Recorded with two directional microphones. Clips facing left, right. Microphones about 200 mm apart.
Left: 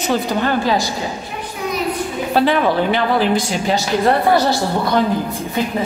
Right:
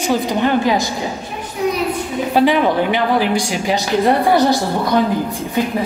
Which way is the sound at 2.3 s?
15° right (ahead or behind).